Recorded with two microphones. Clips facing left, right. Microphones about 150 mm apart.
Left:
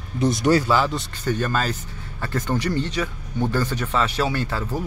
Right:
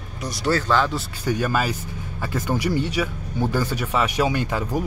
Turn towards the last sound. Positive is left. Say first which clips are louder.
# right 2 dB
turn(degrees=-15)  # may be behind; listen again after turning